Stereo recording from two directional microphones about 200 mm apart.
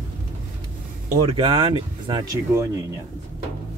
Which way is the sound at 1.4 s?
25° right (ahead or behind).